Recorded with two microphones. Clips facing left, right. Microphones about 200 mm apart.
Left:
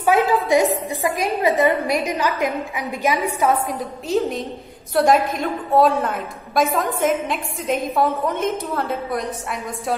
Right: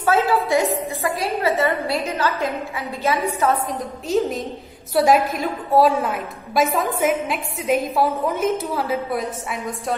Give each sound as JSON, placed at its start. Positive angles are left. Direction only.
{"t": 0.0, "sound": "a woman's voice", "side_deg": 15}
{"t": 4.1, "sound": "a woman's voice", "side_deg": 0}